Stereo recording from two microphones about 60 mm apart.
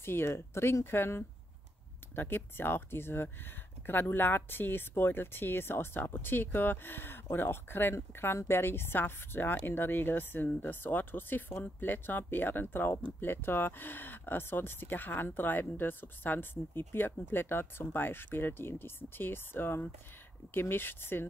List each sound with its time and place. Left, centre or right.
0.0 s speech: left